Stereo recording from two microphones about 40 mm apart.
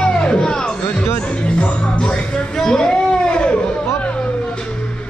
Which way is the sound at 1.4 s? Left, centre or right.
Left.